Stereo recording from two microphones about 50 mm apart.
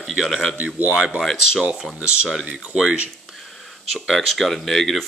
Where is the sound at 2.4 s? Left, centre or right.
Centre.